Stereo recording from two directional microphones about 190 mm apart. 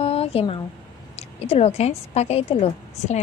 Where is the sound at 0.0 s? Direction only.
30° left (ahead or behind).